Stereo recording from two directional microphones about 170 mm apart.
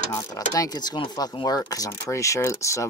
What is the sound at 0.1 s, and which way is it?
Speech, 15° left (ahead or behind).